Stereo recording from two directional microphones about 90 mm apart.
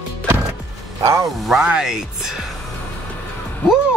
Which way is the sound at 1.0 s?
35° right (ahead or behind).